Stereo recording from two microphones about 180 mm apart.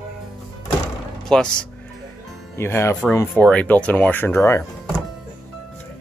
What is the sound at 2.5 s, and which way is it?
Speech, 15° left (ahead or behind).